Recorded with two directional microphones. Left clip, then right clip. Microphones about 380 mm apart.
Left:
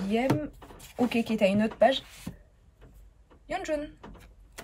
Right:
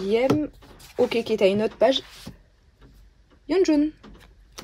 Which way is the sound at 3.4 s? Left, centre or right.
Centre.